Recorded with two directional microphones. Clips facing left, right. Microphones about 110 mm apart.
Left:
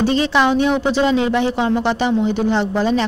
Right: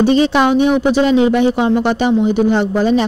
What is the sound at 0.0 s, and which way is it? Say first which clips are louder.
A woman's voice: right 4 dB; 20° right (ahead or behind).